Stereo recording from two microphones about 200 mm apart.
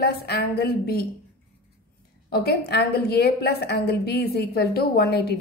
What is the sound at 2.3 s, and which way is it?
Speech, 50° left (ahead or behind).